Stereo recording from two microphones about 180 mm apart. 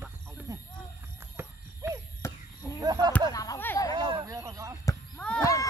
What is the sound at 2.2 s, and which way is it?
Chop, 15° left (ahead or behind).